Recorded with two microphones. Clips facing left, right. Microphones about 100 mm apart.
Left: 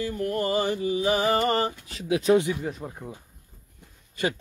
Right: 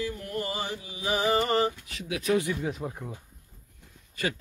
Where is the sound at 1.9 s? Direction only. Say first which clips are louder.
Left 6 dB; 30° left (ahead or behind).